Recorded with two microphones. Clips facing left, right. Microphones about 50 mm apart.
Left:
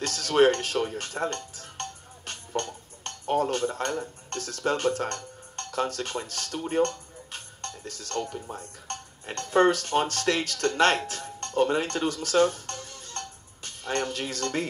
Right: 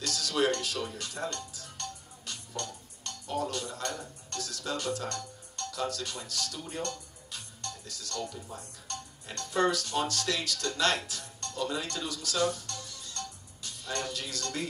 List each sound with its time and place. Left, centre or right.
0.0 s speech: left